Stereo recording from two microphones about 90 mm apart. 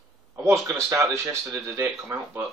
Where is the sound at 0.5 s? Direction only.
30° right (ahead or behind).